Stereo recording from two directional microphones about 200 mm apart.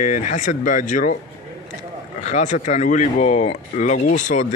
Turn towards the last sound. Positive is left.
turn(degrees=40)  # may be behind; listen again after turning